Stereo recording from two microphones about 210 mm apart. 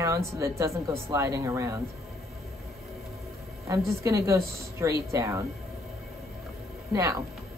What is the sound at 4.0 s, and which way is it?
A woman's voice, 15° right (ahead or behind).